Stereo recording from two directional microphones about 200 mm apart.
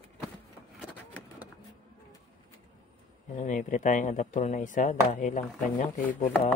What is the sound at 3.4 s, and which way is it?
Speech, 40° left (ahead or behind).